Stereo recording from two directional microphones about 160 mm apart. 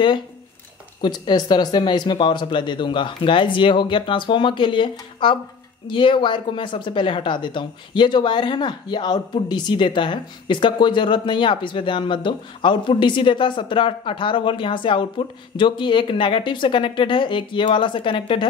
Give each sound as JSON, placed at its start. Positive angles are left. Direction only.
{"t": 1.0, "sound": "speech", "side_deg": 30}